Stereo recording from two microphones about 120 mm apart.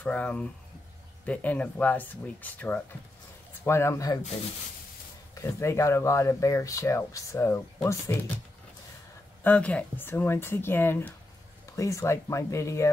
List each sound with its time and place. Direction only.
0.0 s speech: 10° left (ahead or behind)
5.3 s speech: 25° left (ahead or behind)
9.4 s speech: 10° left (ahead or behind)